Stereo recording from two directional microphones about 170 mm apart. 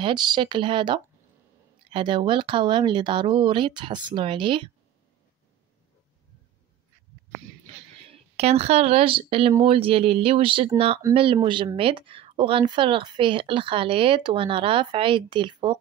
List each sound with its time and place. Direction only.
0.0 s speech: 25° right (ahead or behind)
8.1 s speech: 35° right (ahead or behind)